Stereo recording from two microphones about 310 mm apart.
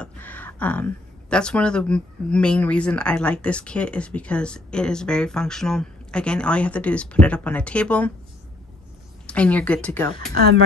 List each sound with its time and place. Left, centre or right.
0.0 s speech: centre
9.2 s speech: centre
10.3 s speech: right